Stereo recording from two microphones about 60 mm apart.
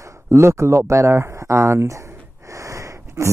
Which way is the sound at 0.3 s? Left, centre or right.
Right.